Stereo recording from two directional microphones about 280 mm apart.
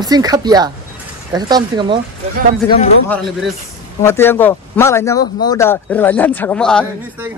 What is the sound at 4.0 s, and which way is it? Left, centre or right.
Speech, centre.